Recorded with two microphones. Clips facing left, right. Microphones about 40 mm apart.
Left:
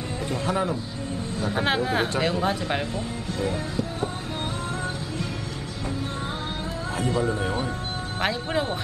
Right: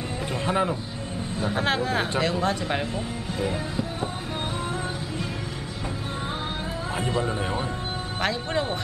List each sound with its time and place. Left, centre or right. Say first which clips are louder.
0.5 s a man's voice: right 2 dB; right
1.5 s speech: left 1 dB; centre
3.3 s music: even; centre
7.0 s speech: left 2 dB; right
8.2 s a man's voice: left 1 dB; centre